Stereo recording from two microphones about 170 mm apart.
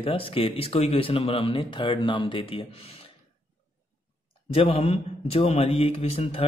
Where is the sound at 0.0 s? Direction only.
30° left (ahead or behind).